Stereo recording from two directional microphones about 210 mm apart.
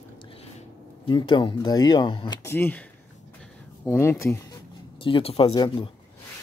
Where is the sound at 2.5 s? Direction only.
10° left (ahead or behind).